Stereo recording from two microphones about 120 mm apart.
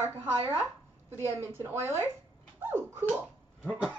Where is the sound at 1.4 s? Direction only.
20° right (ahead or behind).